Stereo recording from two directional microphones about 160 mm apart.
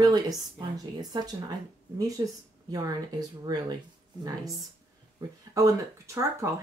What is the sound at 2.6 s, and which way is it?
Speech, 25° right (ahead or behind).